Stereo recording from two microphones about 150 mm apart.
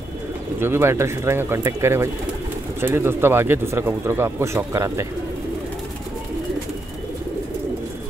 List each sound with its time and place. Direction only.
0.6 s speech: 15° right (ahead or behind)